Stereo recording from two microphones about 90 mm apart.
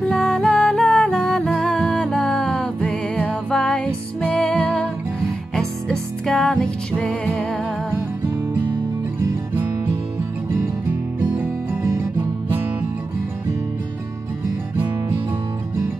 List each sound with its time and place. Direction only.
0.0 s music: 5° left (ahead or behind)
10.5 s music: 25° right (ahead or behind)